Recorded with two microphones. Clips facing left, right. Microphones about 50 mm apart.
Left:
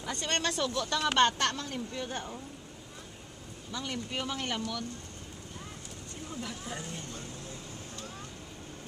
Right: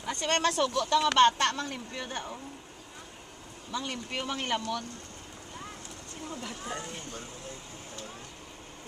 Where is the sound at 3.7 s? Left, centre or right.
Right.